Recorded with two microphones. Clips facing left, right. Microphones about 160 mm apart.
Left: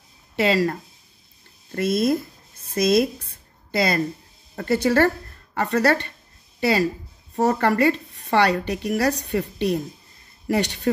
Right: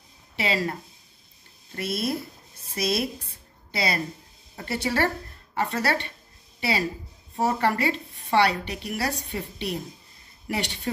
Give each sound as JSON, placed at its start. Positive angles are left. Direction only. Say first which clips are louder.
{"t": 0.5, "sound": "speech", "louder": "left 6 dB", "side_deg": 40}
{"t": 1.8, "sound": "a woman's voice", "louder": "left 8 dB", "side_deg": 45}
{"t": 7.3, "sound": "speech", "louder": "left 5 dB", "side_deg": 45}